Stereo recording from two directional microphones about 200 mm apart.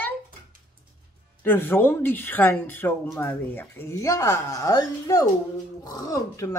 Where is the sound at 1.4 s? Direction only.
10° left (ahead or behind).